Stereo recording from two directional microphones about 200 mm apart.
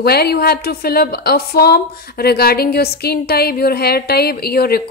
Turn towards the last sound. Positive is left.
turn(degrees=50)  # may be behind; listen again after turning